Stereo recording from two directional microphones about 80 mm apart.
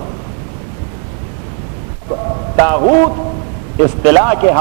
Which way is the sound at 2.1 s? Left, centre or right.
Centre.